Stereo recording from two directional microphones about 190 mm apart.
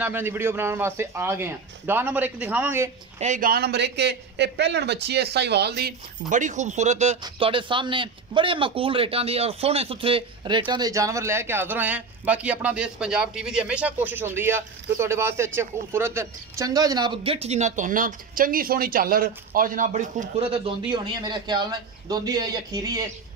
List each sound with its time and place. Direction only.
0.0 s a man's voice: 10° right (ahead or behind)
3.2 s a man's voice: 40° right (ahead or behind)
7.2 s a man's voice: 25° right (ahead or behind)